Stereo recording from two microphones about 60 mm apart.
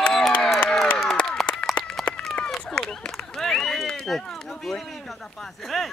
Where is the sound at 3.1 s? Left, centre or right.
Centre.